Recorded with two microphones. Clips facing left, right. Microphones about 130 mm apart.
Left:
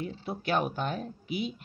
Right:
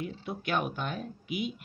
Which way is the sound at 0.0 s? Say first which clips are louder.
Left 1 dB; 35° left (ahead or behind).